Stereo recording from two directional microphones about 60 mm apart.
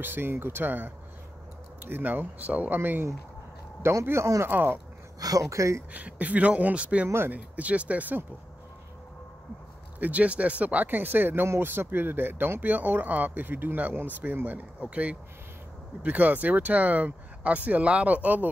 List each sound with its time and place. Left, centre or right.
0.0 s speech: right
3.8 s speech: right
4.5 s speech: right
5.2 s speech: right
5.9 s speech: right
9.9 s speech: right
11.4 s speech: right
11.7 s speech: right